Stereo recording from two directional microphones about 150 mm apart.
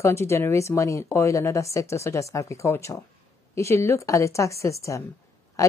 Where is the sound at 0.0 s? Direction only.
15° left (ahead or behind).